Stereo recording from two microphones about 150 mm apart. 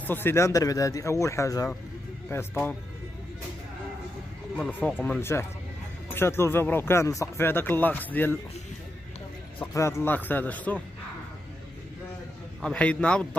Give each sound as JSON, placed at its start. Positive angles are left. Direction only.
{"t": 0.0, "sound": "speech", "side_deg": 15}
{"t": 4.6, "sound": "speech", "side_deg": 10}
{"t": 9.6, "sound": "speech", "side_deg": 20}
{"t": 12.6, "sound": "speech", "side_deg": 5}